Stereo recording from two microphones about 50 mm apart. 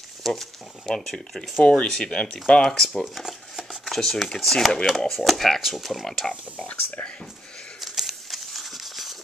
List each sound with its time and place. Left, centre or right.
0.2 s speech: centre
1.6 s speech: left
2.9 s a sound: centre
4.0 s speech: centre
6.5 s speech: left
7.8 s crumpling: centre